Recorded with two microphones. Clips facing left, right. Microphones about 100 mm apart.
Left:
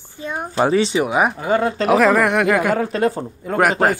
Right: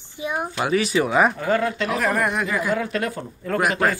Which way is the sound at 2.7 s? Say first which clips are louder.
Left 6 dB; 35° left (ahead or behind).